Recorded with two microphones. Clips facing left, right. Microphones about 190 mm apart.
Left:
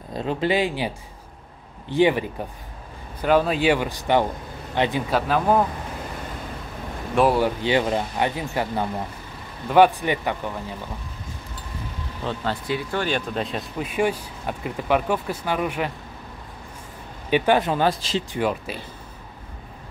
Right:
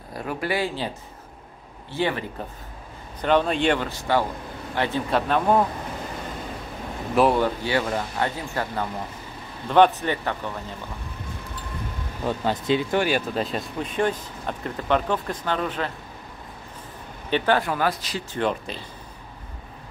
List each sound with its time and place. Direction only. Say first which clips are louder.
0.1 s speech: left 4 dB; 25° left (ahead or behind)
5.1 s speech: right 1 dB; centre (ahead or behind)
7.2 s speech: even; 5° left (ahead or behind)
7.6 s speech: left 3 dB; 20° left (ahead or behind)
12.3 s speech: right 4 dB; 20° right (ahead or behind)
13.0 s speech: right 1 dB; 5° right (ahead or behind); by 15.9 s 10° left (ahead or behind)
17.3 s speech: left 3 dB; 15° left (ahead or behind)
18.3 s speech: right 2 dB; 5° left (ahead or behind)